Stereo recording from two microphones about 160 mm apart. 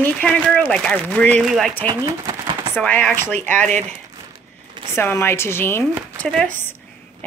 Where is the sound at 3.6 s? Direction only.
50° right (ahead or behind).